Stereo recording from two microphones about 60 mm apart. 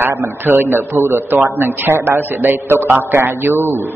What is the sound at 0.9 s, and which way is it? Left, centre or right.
Speech, right.